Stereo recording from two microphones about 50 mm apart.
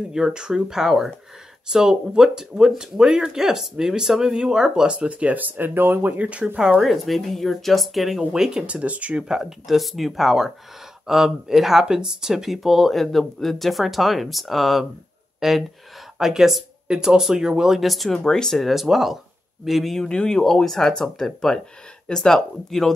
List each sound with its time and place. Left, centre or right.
0.1 s speech: centre; by 6.1 s right
6.1 s speech: right
6.8 s speech: centre
8.2 s speech: centre
8.6 s speech: right
9.3 s speech: centre
18.1 s speech: centre
18.7 s speech: centre